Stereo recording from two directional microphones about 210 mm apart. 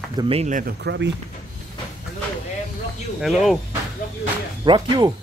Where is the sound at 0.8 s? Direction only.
55° right (ahead or behind).